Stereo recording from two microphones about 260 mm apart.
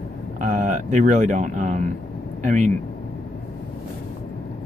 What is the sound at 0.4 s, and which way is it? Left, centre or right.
Speech, right.